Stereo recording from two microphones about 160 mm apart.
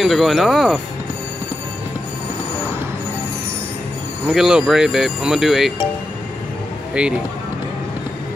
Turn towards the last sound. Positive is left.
turn(degrees=-5)  # may be behind; listen again after turning